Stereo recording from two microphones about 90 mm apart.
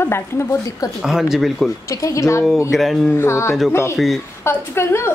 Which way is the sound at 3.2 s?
30° left (ahead or behind).